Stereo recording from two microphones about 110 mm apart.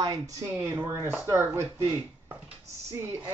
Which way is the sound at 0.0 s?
40° right (ahead or behind).